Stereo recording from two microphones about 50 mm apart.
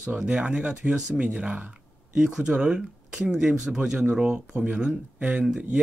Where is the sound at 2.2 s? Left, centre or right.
Centre.